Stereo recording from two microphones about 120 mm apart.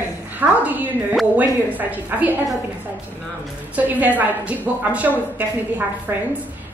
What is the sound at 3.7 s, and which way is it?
A woman's voice, 15° right (ahead or behind).